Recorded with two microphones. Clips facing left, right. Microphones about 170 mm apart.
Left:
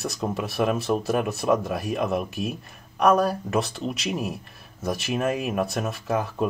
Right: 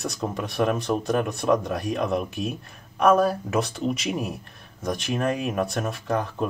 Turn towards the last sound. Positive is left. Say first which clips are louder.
# even
turn(degrees=5)  # may be behind; listen again after turning